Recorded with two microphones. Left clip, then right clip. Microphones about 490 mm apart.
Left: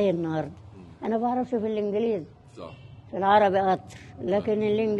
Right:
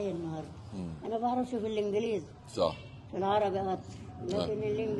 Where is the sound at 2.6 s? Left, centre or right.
Right.